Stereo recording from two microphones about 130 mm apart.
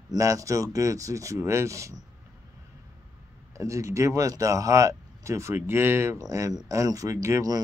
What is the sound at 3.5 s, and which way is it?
Speech, 25° right (ahead or behind).